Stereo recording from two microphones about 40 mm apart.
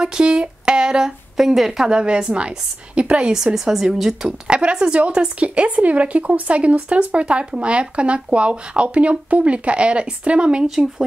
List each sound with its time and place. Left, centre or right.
0.0 s a woman's voice: right
1.3 s a woman's voice: centre
1.9 s a woman's voice: right
3.5 s a woman's voice: centre
4.5 s a woman's voice: right